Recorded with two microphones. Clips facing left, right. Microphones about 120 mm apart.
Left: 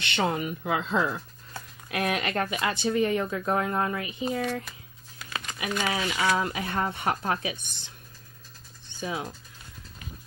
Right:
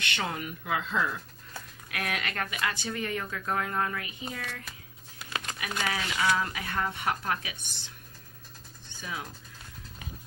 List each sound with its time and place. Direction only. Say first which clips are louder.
0.0 s speech: left 6 dB; 30° left (ahead or behind)
9.0 s speech: left 6 dB; 25° left (ahead or behind)